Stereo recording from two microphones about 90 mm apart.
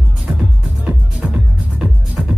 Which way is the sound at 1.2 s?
10° right (ahead or behind).